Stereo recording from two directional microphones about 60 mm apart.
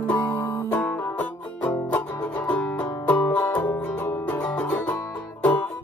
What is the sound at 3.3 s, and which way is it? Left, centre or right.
Music, left.